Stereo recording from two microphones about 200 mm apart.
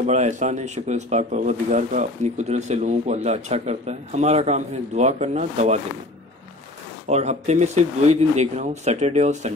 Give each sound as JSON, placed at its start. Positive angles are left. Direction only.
{"t": 0.0, "sound": "speech", "side_deg": -35}
{"t": 7.1, "sound": "speech", "side_deg": -35}